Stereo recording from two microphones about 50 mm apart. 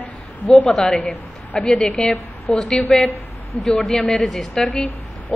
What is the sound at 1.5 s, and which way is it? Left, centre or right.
Speech, centre.